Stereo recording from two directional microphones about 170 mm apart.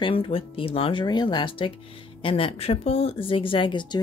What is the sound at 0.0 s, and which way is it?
A woman's voice, 30° left (ahead or behind).